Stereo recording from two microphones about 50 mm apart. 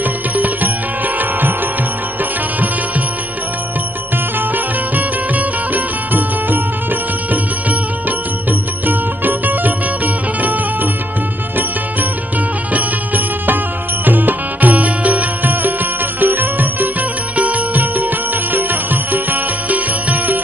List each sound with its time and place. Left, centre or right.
0.4 s music: right
4.9 s music: right
8.5 s music: right
12.7 s music: right